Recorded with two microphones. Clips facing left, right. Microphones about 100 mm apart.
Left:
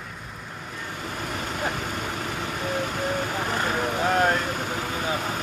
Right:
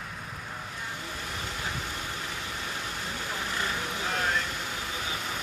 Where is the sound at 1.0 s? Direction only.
60° left (ahead or behind).